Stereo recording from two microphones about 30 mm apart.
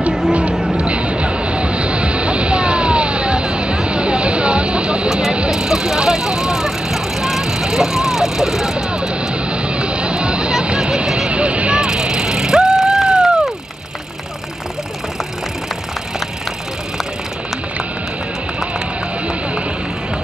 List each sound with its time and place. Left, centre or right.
0.3 s a sound: right
0.7 s music: right
5.5 s vehicle: right
8.7 s music: right
11.8 s vehicle: right